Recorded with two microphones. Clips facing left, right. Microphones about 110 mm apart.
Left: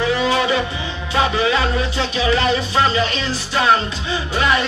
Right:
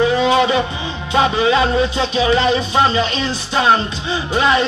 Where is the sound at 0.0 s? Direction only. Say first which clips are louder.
Right 4 dB; 25° right (ahead or behind).